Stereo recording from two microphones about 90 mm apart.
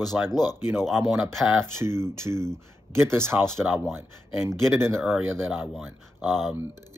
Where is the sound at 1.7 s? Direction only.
30° right (ahead or behind).